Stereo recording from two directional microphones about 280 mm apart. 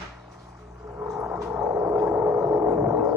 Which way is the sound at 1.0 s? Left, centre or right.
Centre.